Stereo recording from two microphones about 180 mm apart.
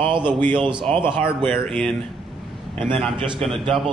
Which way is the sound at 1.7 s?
5° left (ahead or behind).